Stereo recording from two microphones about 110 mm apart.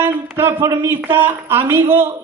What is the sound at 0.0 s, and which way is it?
Speech, 25° right (ahead or behind).